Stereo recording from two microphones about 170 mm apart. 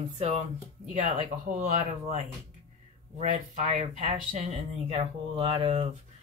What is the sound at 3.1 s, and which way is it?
Speech, 40° right (ahead or behind).